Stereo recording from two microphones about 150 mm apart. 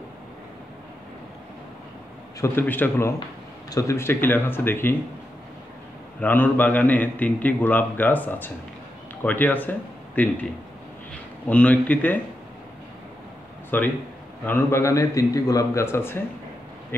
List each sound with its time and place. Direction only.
2.4 s a man's voice: 15° left (ahead or behind)
6.1 s a man's voice: 10° left (ahead or behind)
11.4 s a man's voice: 10° left (ahead or behind)
13.7 s a man's voice: 10° left (ahead or behind)